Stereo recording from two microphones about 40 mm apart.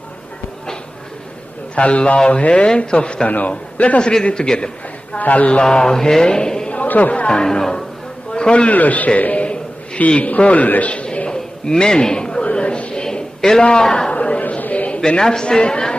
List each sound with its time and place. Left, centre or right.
1.8 s speech: left
3.3 s a man's voice: left
4.0 s speech: left
5.2 s a man's voice: left
5.6 s speech: left
6.7 s chatter: left
7.2 s speech: left
8.3 s a sound: left
8.6 s a man's voice: left
11.2 s a sound: centre
14.1 s a sound: left
15.0 s a man's voice: centre